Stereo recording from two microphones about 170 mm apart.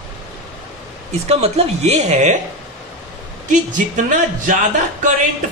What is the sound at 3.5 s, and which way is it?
A woman's voice, 50° right (ahead or behind).